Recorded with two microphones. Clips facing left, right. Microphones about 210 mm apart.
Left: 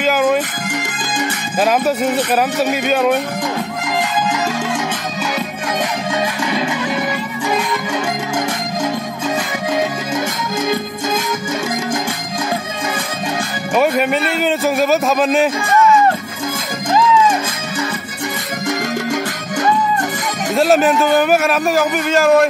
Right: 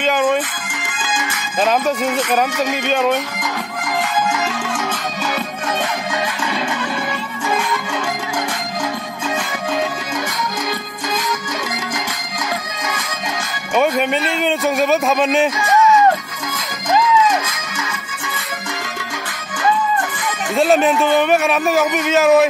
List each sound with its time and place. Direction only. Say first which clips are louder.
0.0 s music: left 2 dB; 5° left (ahead or behind)
0.7 s music: left 4 dB; 40° left (ahead or behind)
1.6 s speech: left 2 dB; 5° left (ahead or behind)
3.3 s music: left 4 dB; 20° left (ahead or behind)
13.7 s a man's voice: left 1 dB; 5° left (ahead or behind)
20.5 s a man's voice: left 1 dB; centre (ahead or behind)